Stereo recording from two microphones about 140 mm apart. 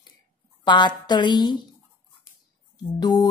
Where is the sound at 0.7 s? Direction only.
30° left (ahead or behind).